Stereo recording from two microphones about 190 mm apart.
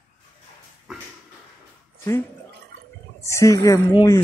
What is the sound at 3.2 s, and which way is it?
Speech, 15° left (ahead or behind).